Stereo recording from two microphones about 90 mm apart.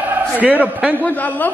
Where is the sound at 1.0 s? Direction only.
20° left (ahead or behind).